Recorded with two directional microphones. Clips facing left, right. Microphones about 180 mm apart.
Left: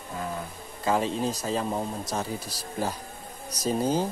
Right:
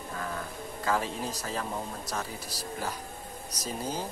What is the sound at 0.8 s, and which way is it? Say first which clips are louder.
Speech: left 5 dB; 20° left (ahead or behind).